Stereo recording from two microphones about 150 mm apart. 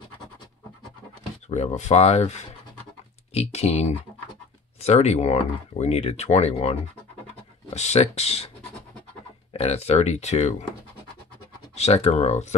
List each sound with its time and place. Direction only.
1.5 s speech: 50° left (ahead or behind)
9.5 s speech: 40° left (ahead or behind)
11.7 s speech: 45° left (ahead or behind)